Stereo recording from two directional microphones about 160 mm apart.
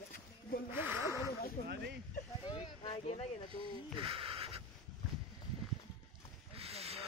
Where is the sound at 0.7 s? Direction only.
15° right (ahead or behind).